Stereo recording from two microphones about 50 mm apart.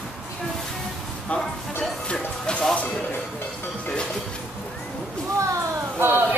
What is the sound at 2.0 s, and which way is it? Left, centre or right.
Music, centre.